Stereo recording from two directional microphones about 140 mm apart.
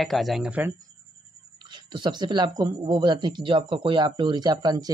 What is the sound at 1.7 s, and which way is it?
Speech, 35° right (ahead or behind).